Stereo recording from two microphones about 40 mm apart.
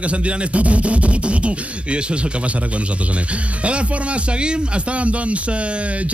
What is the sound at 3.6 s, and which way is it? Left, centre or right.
A man's voice, right.